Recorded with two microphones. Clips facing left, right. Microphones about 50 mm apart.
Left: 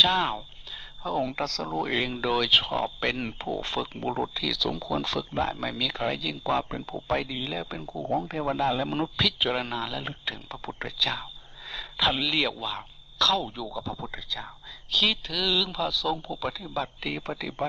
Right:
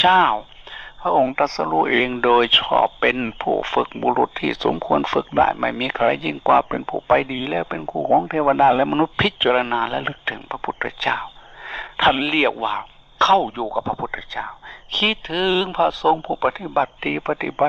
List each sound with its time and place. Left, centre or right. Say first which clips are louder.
0.0 s speech: right 10 dB; right